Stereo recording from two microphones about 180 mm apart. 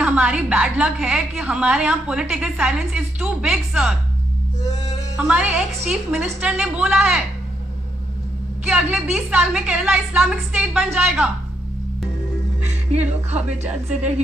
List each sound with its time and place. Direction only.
0.0 s a woman's voice: 5° right (ahead or behind)
5.1 s a woman's voice: 5° right (ahead or behind)
8.6 s a woman's voice: 5° right (ahead or behind)
12.9 s speech: 40° right (ahead or behind)